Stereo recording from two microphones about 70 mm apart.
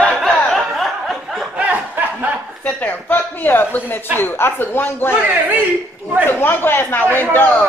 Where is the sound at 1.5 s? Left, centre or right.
Right.